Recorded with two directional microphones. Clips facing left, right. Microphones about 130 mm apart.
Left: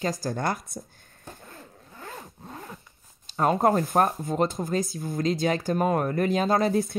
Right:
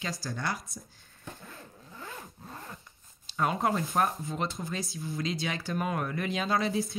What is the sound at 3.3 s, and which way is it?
Speech, 40° left (ahead or behind).